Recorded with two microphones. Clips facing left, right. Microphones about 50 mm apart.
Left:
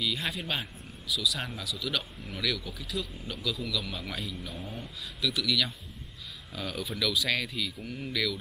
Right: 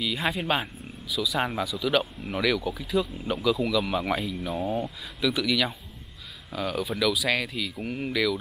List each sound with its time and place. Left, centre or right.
0.0 s speech: centre
6.5 s speech: centre
7.8 s speech: centre